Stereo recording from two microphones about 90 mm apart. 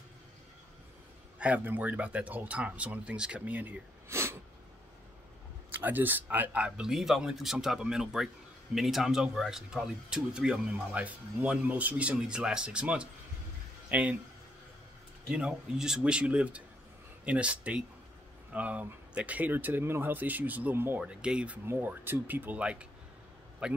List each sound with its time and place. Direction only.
1.4 s speech: 20° right (ahead or behind)
5.8 s speech: 20° right (ahead or behind)
15.2 s speech: 10° right (ahead or behind); by 21.0 s 25° right (ahead or behind)
21.0 s speech: 10° right (ahead or behind)
21.6 s speech: 20° right (ahead or behind)